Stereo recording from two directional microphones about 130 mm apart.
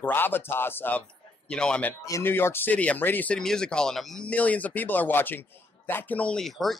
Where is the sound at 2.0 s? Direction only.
20° left (ahead or behind).